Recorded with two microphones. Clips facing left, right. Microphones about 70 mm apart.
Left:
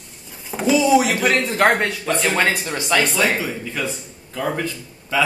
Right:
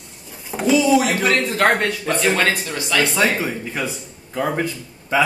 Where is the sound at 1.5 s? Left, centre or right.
Centre.